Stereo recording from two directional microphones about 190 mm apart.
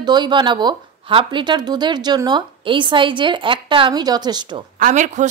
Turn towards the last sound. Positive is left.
turn(degrees=-40)  # may be behind; listen again after turning